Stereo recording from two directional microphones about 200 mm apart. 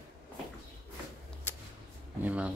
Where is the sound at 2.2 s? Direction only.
5° right (ahead or behind).